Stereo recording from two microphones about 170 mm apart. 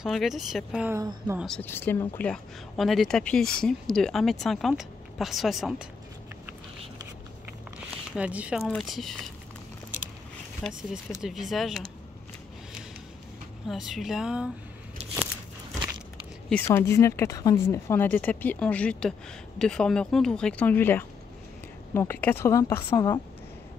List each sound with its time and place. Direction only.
0.0 s speech: centre (ahead or behind)
0.8 s speech: 20° right (ahead or behind)
1.4 s speech: 5° left (ahead or behind)
8.2 s speech: 5° right (ahead or behind)
10.6 s speech: 5° left (ahead or behind)
13.7 s speech: centre (ahead or behind)
16.4 s speech: 10° left (ahead or behind)